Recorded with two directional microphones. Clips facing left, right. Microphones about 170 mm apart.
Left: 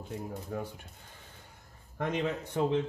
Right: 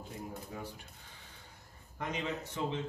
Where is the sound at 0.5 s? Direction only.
50° left (ahead or behind).